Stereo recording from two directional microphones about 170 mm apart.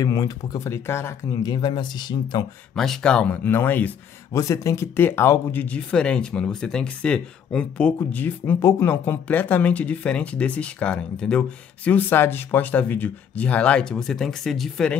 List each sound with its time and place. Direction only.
0.0 s speech: 20° left (ahead or behind)
1.5 s speech: 25° left (ahead or behind)
2.7 s speech: centre (ahead or behind)